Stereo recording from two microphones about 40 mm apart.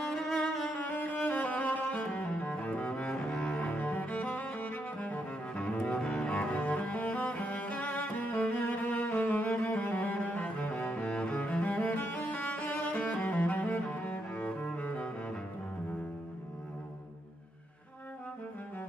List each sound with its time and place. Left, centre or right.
0.1 s music: centre
0.7 s music: left
1.9 s double bass: left
3.5 s cello: left
11.9 s cello: left